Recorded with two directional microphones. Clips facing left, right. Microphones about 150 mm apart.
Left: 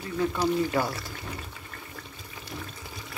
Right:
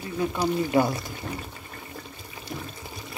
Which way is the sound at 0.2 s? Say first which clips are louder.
Even; 15° right (ahead or behind).